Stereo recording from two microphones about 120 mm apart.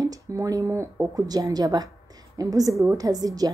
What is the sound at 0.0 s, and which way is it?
Speech, 30° right (ahead or behind).